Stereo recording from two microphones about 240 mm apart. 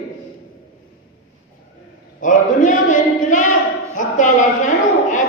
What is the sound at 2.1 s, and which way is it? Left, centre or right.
A woman's voice, left.